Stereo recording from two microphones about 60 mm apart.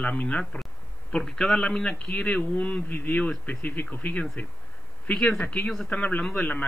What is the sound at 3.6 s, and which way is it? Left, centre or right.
Speech, left.